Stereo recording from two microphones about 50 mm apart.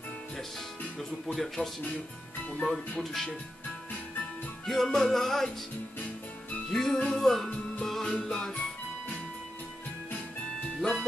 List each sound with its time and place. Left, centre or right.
0.9 s speech: centre
2.4 s speech: left
3.0 s speech: centre
4.6 s music: centre
6.7 s music: centre
7.2 s speech: centre
7.8 s music: centre
10.8 s speech: centre